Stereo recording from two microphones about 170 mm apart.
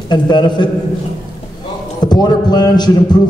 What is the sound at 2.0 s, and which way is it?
A man's voice, 25° left (ahead or behind).